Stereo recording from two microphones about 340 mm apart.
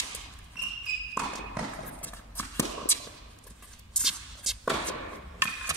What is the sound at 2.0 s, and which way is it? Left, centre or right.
Clip-clop, centre.